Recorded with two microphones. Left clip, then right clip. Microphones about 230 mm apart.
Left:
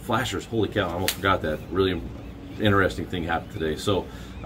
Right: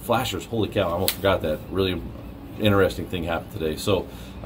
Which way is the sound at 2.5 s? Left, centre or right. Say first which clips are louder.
Right 2 dB; centre.